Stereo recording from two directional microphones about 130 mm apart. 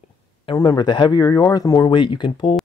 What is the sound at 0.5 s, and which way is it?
Speech, 35° left (ahead or behind).